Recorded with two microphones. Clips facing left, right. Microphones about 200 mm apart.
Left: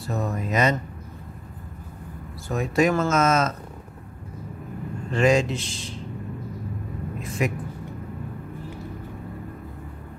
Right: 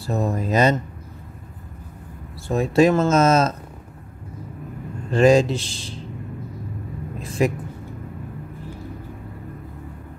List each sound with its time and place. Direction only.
0.0 s speech: 30° right (ahead or behind)
2.4 s speech: 30° right (ahead or behind)
5.1 s speech: 35° right (ahead or behind)
7.2 s a man's voice: 30° right (ahead or behind)